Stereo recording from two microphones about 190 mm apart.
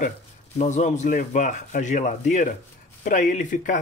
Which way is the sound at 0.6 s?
40° left (ahead or behind).